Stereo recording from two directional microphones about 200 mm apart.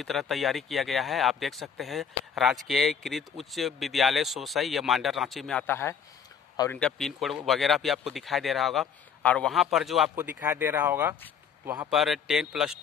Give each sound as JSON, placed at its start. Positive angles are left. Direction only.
{"t": 0.0, "sound": "speech", "side_deg": 0}
{"t": 6.8, "sound": "a man's voice", "side_deg": 0}
{"t": 11.9, "sound": "speech", "side_deg": 0}